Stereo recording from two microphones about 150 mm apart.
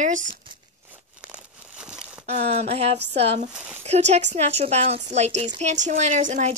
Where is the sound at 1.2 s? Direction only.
5° right (ahead or behind).